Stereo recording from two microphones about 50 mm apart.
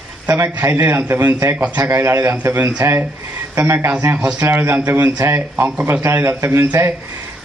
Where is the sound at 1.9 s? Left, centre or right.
Right.